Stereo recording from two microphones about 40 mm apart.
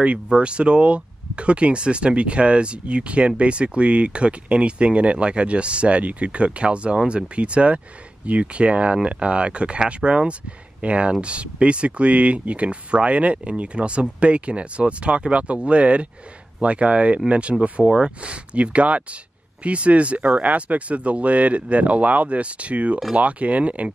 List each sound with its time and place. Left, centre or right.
0.0 s speech: right